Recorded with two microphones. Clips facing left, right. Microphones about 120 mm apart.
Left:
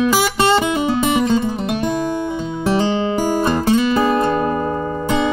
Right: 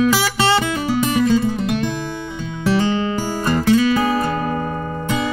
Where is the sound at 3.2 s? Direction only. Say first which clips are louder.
Left 3 dB; 15° left (ahead or behind).